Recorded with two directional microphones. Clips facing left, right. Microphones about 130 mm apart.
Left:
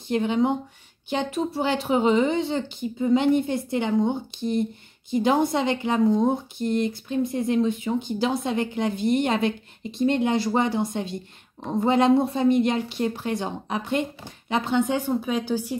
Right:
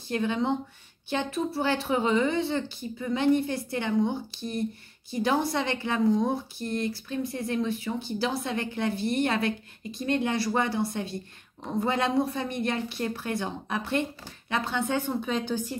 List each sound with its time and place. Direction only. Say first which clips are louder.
0.1 s a woman's voice: left 5 dB; 20° left (ahead or behind)